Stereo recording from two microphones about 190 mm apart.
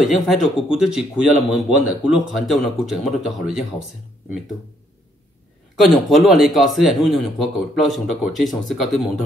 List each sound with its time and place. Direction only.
0.1 s speech: centre (ahead or behind)
5.8 s speech: centre (ahead or behind)